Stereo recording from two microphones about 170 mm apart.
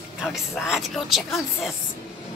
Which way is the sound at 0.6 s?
Centre (ahead or behind).